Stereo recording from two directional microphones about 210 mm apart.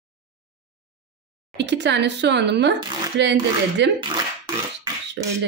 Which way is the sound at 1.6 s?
55° right (ahead or behind).